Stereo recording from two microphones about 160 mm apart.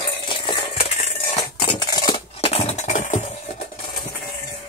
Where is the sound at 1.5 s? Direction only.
30° left (ahead or behind); by 3.3 s 50° left (ahead or behind).